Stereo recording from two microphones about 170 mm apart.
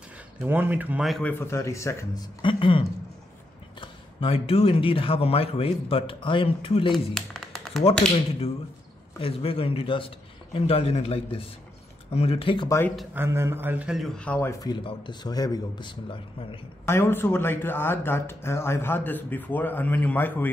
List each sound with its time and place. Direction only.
0.4 s speech: 10° right (ahead or behind)
1.4 s speech: 15° left (ahead or behind)
2.4 s speech: 30° left (ahead or behind)
3.8 s speech: 35° left (ahead or behind)
6.9 s a sound: centre (ahead or behind)
9.2 s speech: 35° left (ahead or behind)
12.6 s speech: 15° left (ahead or behind)
13.1 s speech: 15° right (ahead or behind); by 16.4 s 30° left (ahead or behind)
16.8 s speech: 15° left (ahead or behind)